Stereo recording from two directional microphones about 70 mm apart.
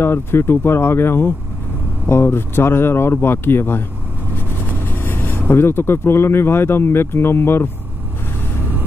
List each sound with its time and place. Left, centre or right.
0.0 s speech: left
4.8 s speech: left